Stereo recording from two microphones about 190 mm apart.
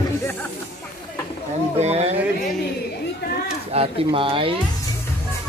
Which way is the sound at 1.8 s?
35° right (ahead or behind).